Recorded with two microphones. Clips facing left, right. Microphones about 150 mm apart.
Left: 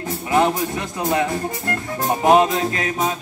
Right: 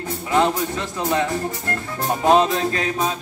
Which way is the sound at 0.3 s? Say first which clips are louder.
Left 1 dB; 15° left (ahead or behind).